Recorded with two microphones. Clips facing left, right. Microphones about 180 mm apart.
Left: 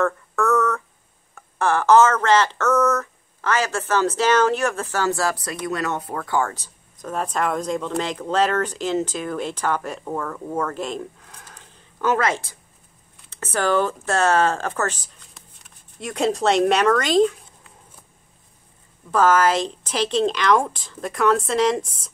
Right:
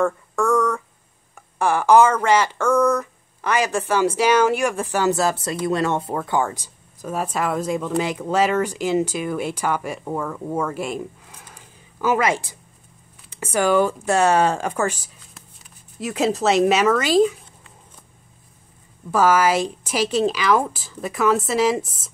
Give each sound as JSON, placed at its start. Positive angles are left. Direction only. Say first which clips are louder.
{"t": 0.0, "sound": "a sound", "louder": "right 1 dB", "side_deg": -10}
{"t": 1.6, "sound": "speech", "louder": "right 1 dB", "side_deg": -10}
{"t": 19.0, "sound": "a woman's voice", "louder": "even", "side_deg": -10}